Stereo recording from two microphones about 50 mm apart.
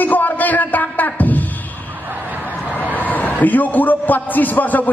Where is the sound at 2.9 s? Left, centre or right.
Left.